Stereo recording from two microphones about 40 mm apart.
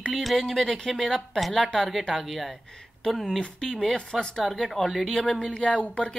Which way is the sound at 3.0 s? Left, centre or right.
Centre.